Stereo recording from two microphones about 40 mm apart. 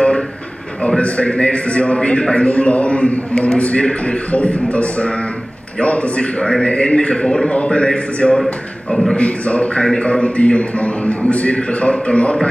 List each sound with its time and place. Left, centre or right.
0.8 s a man's voice: left
6.4 s a man's voice: left